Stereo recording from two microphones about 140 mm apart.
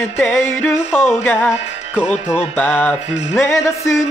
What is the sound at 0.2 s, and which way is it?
Music, 10° left (ahead or behind).